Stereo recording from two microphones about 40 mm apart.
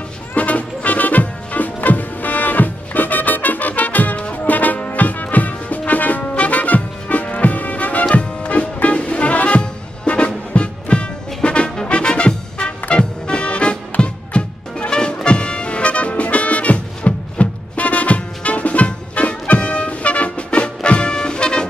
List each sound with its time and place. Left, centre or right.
0.4 s music: left